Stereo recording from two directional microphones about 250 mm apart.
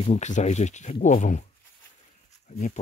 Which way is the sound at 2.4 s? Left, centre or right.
Left.